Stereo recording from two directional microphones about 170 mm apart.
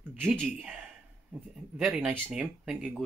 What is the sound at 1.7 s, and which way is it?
Speech, centre (ahead or behind).